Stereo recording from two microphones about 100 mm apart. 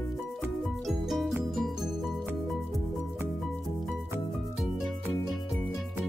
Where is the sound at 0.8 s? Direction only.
Centre (ahead or behind).